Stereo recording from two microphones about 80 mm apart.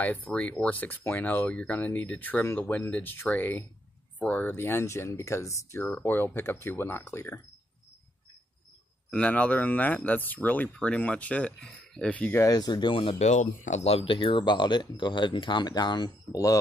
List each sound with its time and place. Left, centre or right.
0.0 s speech: left
5.8 s speech: left
9.1 s speech: centre
12.4 s speech: left
16.3 s speech: left